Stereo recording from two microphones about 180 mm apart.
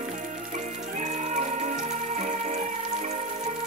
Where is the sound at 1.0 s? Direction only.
40° right (ahead or behind).